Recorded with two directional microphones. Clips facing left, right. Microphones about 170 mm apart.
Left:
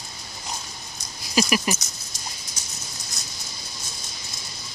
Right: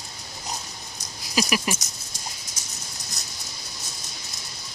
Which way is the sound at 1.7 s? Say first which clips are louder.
Even; 45° right (ahead or behind).